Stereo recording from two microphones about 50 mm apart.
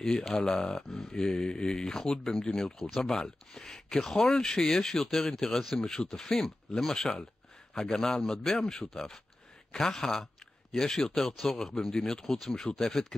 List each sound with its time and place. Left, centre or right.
0.0 s speech: centre
0.4 s speech: centre
11.9 s speech: centre